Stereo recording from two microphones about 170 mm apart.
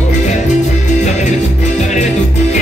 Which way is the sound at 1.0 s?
45° left (ahead or behind).